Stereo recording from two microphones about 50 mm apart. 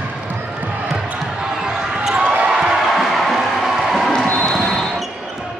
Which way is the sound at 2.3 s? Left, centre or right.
Right.